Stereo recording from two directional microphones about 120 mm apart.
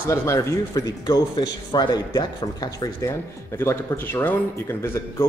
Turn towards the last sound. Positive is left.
turn(degrees=20)  # may be behind; listen again after turning